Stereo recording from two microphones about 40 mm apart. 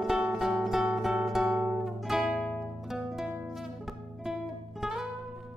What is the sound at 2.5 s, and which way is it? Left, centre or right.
Music, centre.